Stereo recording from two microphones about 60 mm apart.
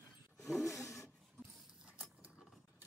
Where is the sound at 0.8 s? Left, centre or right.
Left.